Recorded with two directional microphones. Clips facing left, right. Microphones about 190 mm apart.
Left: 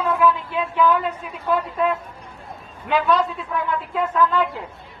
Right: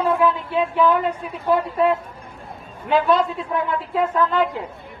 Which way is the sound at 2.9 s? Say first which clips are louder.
Right 2 dB; 25° right (ahead or behind).